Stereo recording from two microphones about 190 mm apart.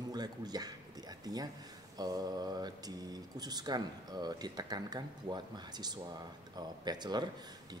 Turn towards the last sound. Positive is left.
turn(degrees=-20)  # may be behind; listen again after turning